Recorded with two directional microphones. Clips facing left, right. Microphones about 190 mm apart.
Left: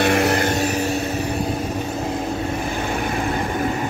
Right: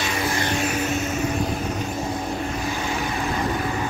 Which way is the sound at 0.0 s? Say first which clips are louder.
Left 8 dB; 65° left (ahead or behind).